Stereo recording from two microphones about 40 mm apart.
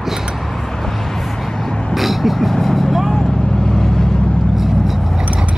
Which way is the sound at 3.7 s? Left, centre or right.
Centre.